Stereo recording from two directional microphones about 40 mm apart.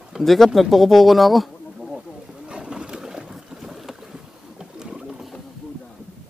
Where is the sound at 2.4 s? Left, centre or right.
Right.